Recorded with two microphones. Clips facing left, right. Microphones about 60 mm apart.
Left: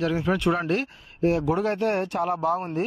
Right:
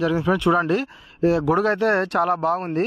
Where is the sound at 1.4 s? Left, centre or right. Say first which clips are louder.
Right 5 dB; right.